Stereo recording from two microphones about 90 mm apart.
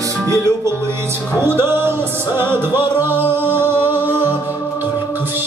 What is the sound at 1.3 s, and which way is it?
Music, 25° right (ahead or behind).